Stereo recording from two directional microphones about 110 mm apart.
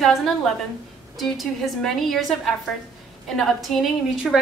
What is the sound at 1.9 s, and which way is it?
A woman's voice, centre (ahead or behind).